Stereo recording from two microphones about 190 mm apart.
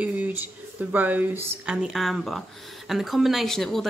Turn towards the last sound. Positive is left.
turn(degrees=0)  # may be behind; listen again after turning